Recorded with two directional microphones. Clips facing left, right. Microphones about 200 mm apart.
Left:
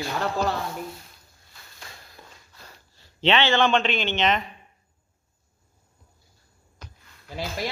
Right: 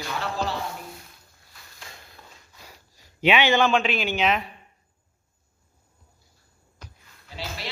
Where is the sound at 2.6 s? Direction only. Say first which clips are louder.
Right 1 dB; 10° right (ahead or behind).